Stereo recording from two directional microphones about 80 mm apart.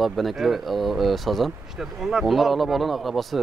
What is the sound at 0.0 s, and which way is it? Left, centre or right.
Speech, centre.